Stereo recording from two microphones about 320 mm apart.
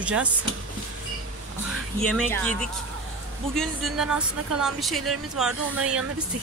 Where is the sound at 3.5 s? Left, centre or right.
Centre.